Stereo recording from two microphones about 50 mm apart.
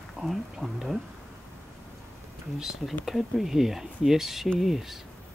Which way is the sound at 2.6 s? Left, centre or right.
Centre.